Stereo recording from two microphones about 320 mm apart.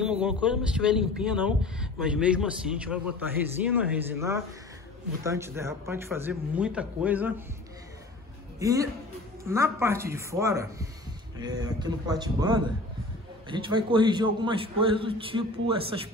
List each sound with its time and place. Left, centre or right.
0.0 s a man's voice: centre
8.5 s a man's voice: centre